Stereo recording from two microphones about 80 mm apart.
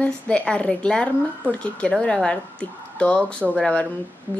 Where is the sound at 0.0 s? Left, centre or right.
Centre.